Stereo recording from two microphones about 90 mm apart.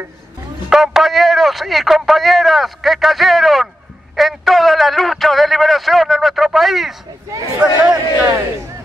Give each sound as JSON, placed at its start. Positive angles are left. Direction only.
{"t": 0.7, "sound": "a man's voice", "side_deg": -5}
{"t": 7.8, "sound": "a man's voice", "side_deg": -40}